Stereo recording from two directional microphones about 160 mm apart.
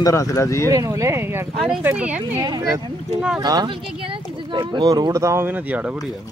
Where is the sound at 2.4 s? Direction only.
25° right (ahead or behind).